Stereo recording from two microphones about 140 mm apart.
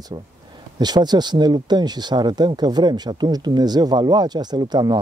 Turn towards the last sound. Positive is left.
turn(degrees=-30)  # may be behind; listen again after turning